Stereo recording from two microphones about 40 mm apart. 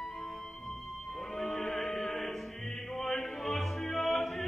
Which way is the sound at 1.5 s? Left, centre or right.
Centre.